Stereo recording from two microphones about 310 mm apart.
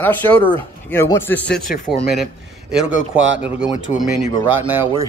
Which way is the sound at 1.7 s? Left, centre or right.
Left.